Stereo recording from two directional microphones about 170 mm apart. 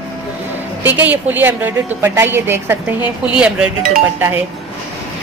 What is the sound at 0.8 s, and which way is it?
A woman's voice, 10° right (ahead or behind).